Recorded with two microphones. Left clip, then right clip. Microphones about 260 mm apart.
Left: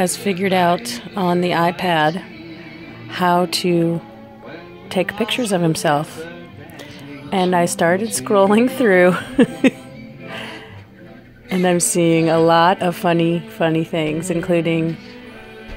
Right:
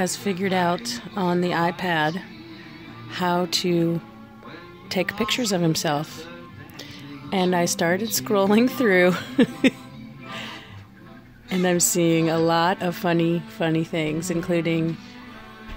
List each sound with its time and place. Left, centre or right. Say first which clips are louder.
0.0 s a woman's voice: left 6 dB; centre
7.2 s a woman's voice: left 5 dB; centre
10.3 s music: left 4 dB; centre
11.4 s a woman's voice: left 4 dB; centre